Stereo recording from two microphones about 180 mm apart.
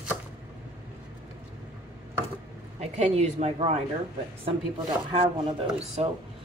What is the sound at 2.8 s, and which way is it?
Speech, 35° right (ahead or behind).